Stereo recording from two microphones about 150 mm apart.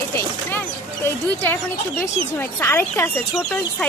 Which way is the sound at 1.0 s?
15° left (ahead or behind).